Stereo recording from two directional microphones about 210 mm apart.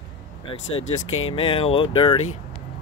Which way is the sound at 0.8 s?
75° left (ahead or behind).